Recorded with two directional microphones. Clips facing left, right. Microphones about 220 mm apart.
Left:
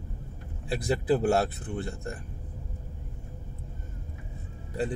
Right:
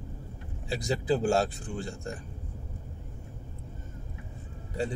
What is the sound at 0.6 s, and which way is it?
Speech, 55° left (ahead or behind).